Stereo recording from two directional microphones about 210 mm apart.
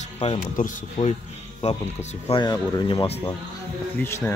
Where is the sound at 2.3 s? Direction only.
20° left (ahead or behind).